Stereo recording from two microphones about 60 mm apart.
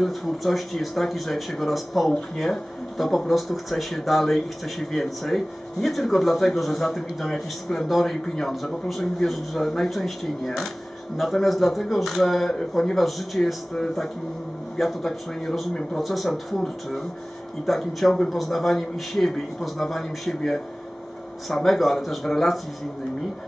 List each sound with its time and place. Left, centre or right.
0.0 s speech: centre